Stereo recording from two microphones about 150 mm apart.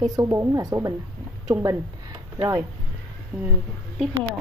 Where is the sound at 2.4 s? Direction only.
20° right (ahead or behind).